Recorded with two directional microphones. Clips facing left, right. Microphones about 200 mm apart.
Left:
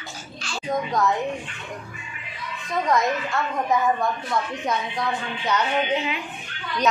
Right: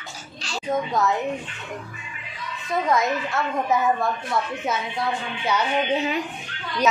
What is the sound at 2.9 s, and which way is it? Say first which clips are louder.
Speech: left 1 dB; 5° right (ahead or behind).